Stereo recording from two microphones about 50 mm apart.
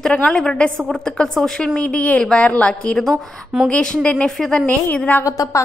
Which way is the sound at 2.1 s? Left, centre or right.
Left.